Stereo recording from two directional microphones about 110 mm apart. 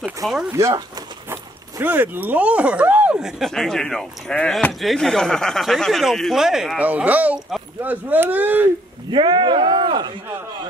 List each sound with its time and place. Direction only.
0.2 s speech: centre (ahead or behind)
0.5 s speech: 30° right (ahead or behind)
3.2 s speech: 5° right (ahead or behind)
6.9 s speech: 15° right (ahead or behind)
9.1 s speech: 45° right (ahead or behind)